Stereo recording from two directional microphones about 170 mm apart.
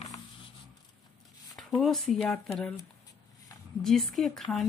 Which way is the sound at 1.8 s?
Centre (ahead or behind).